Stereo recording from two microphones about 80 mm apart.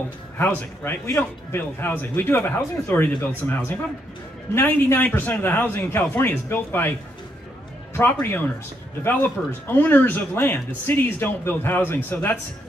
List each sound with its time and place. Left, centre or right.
0.4 s a man's voice: left
1.8 s speech: left